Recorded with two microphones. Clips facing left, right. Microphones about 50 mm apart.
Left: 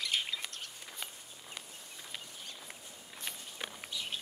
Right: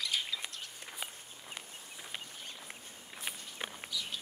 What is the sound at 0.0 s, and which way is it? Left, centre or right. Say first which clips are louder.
Bird: left 1 dB; left.